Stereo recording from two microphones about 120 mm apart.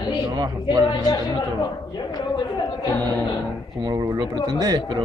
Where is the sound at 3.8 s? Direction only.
35° right (ahead or behind).